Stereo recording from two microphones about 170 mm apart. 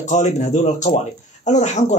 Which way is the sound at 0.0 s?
45° left (ahead or behind).